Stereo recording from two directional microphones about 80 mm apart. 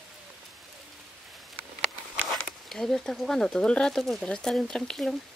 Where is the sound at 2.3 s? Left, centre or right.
Centre.